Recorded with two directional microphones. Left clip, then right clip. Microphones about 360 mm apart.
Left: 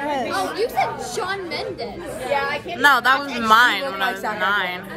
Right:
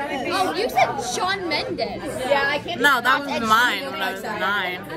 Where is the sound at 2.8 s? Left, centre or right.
Centre.